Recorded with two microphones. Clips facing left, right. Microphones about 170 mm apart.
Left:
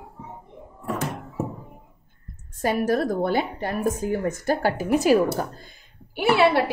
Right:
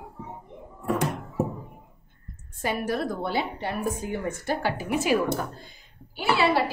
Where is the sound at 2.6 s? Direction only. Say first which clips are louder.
Left 5 dB; 45° left (ahead or behind).